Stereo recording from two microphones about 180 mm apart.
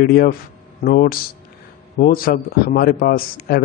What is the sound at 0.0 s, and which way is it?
A man's voice, 55° left (ahead or behind).